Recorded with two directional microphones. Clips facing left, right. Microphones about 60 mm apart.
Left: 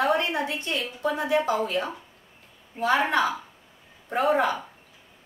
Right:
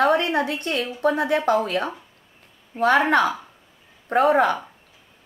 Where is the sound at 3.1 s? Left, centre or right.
Right.